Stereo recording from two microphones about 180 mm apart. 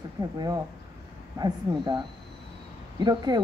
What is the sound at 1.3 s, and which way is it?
Speech, 25° right (ahead or behind).